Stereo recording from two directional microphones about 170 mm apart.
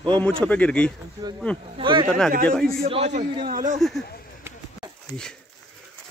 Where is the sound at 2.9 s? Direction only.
40° right (ahead or behind).